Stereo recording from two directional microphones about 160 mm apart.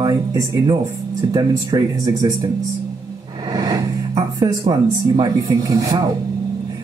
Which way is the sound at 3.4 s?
20° right (ahead or behind).